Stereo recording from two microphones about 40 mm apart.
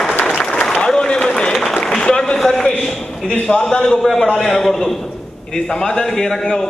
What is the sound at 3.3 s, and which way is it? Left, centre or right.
A man's voice, centre.